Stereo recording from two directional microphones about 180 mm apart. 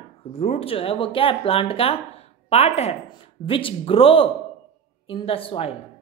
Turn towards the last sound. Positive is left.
turn(degrees=30)  # may be behind; listen again after turning